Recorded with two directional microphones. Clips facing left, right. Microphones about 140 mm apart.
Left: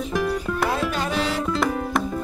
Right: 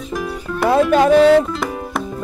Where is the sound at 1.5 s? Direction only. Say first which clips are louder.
Left 1 dB; centre (ahead or behind).